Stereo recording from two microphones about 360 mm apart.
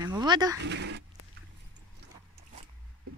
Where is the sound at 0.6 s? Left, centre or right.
Right.